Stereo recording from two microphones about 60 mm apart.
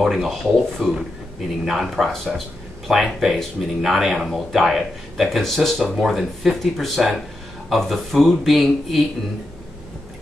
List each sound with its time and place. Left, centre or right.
0.0 s speech: centre